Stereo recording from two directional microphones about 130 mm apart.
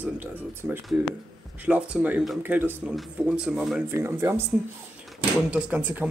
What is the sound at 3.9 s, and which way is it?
Speech, 20° right (ahead or behind).